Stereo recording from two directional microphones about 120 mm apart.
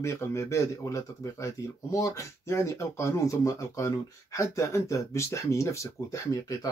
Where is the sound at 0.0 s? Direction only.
25° left (ahead or behind).